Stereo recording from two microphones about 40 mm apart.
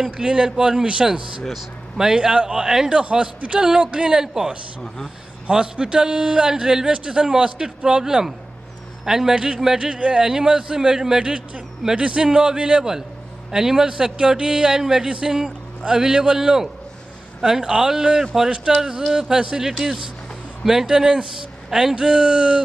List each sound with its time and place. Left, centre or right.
0.2 s a man's voice: right
1.5 s speech: centre
2.1 s a man's voice: right
2.6 s a man's voice: centre
2.9 s a man's voice: right
4.2 s a man's voice: centre
5.5 s a man's voice: right
9.8 s a man's voice: right
13.5 s a man's voice: centre
21.6 s speech: centre
21.9 s a man's voice: right